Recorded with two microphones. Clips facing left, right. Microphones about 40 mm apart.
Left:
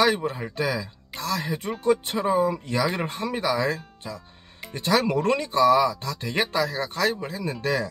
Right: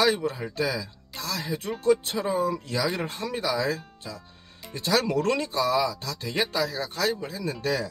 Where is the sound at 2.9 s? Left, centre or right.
Left.